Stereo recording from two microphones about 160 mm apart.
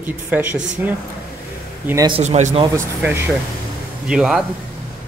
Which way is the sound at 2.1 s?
40° right (ahead or behind).